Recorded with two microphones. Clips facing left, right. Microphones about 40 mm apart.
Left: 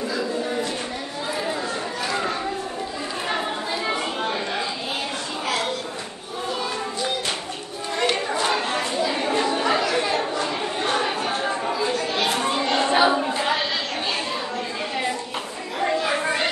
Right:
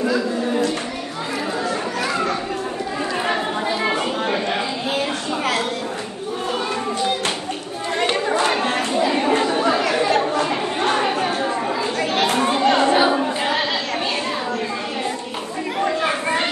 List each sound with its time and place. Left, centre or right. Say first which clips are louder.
0.0 s a sound: right 5 dB; right
5.4 s a sound: right 3 dB; right
8.0 s chatter: right 3 dB; right
9.8 s chatter: right 4 dB; right
11.6 s chatter: right 2 dB; right
12.9 s chatter: right 2 dB; centre